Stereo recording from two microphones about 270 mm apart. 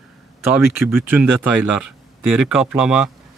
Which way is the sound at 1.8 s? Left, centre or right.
Right.